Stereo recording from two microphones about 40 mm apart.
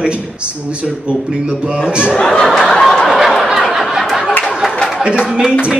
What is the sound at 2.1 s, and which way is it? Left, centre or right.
Speech, centre.